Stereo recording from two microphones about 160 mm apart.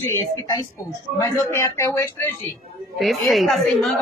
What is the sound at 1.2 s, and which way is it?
A man's voice, 20° left (ahead or behind).